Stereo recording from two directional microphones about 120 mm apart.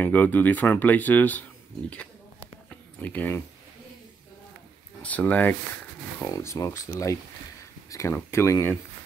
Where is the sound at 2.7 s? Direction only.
15° left (ahead or behind).